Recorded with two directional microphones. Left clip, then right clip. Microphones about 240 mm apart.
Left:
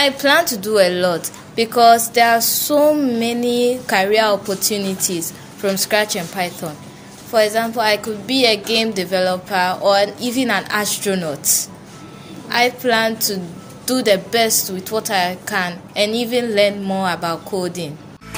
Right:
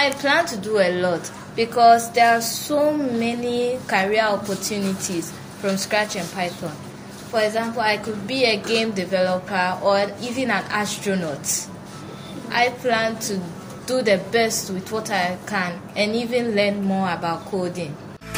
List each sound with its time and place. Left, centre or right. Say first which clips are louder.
0.0 s a woman's voice: left 4 dB; left